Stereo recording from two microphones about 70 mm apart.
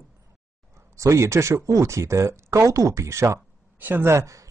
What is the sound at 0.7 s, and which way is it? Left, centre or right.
Speech, right.